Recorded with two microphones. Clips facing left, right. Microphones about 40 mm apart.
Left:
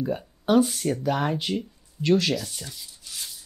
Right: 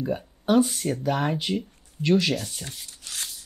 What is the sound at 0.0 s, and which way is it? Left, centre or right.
Speech, centre.